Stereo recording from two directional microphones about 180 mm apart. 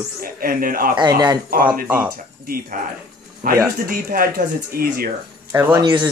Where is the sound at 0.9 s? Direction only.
20° right (ahead or behind).